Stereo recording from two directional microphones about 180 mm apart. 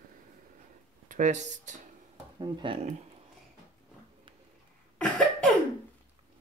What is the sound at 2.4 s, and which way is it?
Speech, 25° right (ahead or behind).